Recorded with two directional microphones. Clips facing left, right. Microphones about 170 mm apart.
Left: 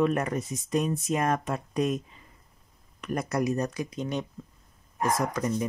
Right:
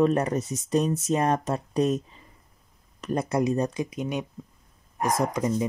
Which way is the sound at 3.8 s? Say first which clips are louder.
Right 2 dB; 10° right (ahead or behind).